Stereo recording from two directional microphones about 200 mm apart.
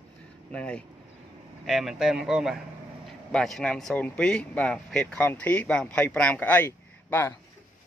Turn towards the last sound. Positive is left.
turn(degrees=10)  # may be behind; listen again after turning